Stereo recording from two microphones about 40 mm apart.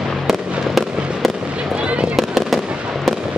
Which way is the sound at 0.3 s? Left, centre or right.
Centre.